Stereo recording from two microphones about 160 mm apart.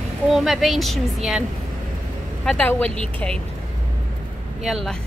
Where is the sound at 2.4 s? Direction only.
10° left (ahead or behind).